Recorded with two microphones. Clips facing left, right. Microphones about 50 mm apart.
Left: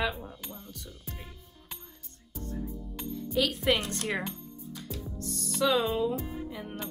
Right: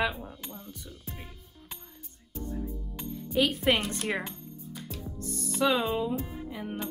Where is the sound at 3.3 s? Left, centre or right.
Right.